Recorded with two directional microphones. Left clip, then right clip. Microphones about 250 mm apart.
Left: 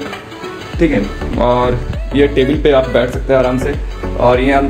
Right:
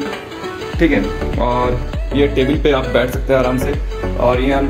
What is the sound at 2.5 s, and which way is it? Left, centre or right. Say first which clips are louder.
Speech: left 4 dB; centre.